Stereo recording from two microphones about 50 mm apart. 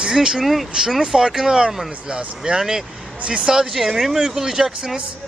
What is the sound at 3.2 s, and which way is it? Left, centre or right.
Speech, right.